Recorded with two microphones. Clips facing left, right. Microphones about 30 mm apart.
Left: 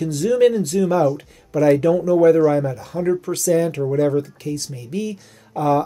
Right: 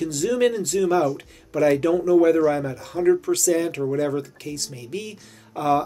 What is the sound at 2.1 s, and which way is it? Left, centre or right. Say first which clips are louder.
Speech: left 3 dB; right.